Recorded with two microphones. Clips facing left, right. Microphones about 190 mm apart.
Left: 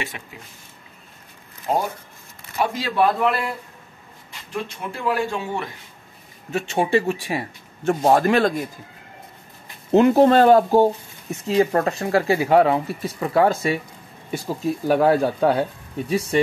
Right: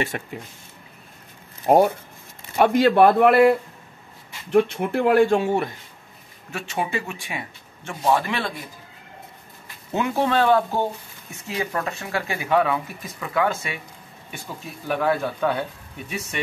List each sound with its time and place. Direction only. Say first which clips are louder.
0.1 s speech: right 8 dB; 50° right (ahead or behind)
1.7 s speech: right 7 dB; 55° right (ahead or behind)
6.5 s speech: left 7 dB; 25° left (ahead or behind); by 8.5 s 45° left (ahead or behind)
9.8 s speech: left 9 dB; 40° left (ahead or behind)